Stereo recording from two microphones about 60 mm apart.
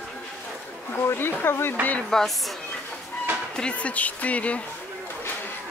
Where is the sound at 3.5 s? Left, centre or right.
Centre.